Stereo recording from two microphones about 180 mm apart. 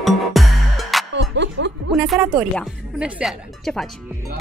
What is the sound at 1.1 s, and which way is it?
Music, 80° right.